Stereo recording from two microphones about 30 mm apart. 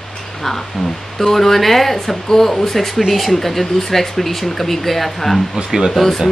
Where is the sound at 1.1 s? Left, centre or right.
Centre.